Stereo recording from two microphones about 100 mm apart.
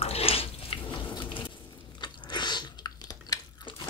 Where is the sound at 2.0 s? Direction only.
50° left (ahead or behind).